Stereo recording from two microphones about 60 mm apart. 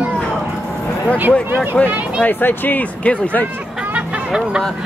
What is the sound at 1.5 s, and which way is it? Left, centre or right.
Speech, right.